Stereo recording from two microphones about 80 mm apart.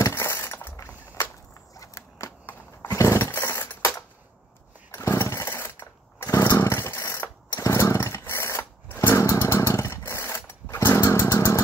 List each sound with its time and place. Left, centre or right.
0.1 s breaking: left
0.7 s a sound: left
2.4 s a sound: left
4.9 s chainsaw: left
7.6 s chainsaw: left
9.1 s motorcycle: left
11.1 s chainsaw: left